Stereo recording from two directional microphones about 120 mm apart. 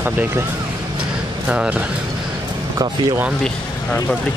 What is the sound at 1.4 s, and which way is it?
Speech, 10° right (ahead or behind).